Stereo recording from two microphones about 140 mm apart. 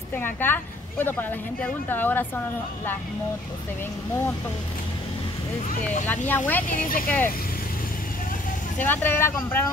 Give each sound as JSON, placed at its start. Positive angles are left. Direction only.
{"t": 0.1, "sound": "a woman's voice", "side_deg": 15}
{"t": 6.0, "sound": "a woman's voice", "side_deg": 15}
{"t": 6.7, "sound": "speech", "side_deg": 85}
{"t": 8.7, "sound": "a woman's voice", "side_deg": 15}